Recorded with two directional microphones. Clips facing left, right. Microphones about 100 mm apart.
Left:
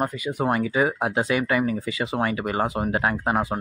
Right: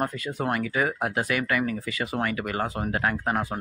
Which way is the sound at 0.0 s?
10° left (ahead or behind).